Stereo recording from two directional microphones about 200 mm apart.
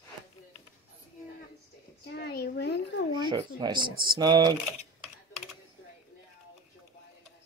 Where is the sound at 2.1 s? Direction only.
55° left (ahead or behind).